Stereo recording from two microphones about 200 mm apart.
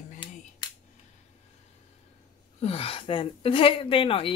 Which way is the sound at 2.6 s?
30° left (ahead or behind).